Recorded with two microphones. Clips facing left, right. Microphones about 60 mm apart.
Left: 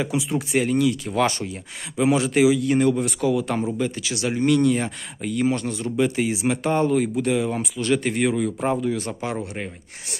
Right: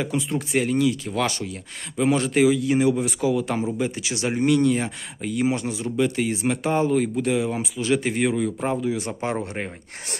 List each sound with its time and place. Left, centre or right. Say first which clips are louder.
0.0 s speech: left 1 dB; centre
1.2 s speech: left 4 dB; left
2.0 s speech: left 1 dB; centre
3.8 s speech: even; right
4.5 s speech: left 1 dB; centre
5.9 s speech: left 1 dB; centre
6.3 s speech: left 1 dB; centre
9.2 s speech: right 1 dB; right